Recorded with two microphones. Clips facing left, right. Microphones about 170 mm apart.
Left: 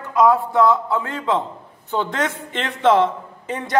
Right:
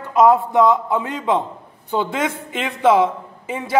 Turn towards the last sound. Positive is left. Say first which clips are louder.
# right 1 dB
turn(degrees=-5)  # may be behind; listen again after turning